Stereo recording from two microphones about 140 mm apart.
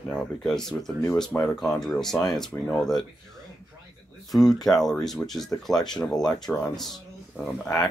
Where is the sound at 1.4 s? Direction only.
25° left (ahead or behind).